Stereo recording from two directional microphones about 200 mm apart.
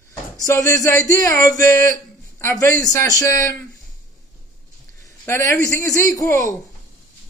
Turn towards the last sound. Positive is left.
turn(degrees=15)  # may be behind; listen again after turning